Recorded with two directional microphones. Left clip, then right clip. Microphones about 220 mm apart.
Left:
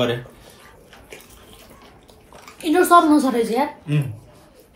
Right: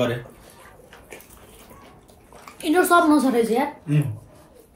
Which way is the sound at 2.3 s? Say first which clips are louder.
Left 1 dB; centre (ahead or behind).